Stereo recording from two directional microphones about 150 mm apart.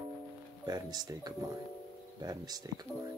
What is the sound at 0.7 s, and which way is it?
Speech, 25° right (ahead or behind).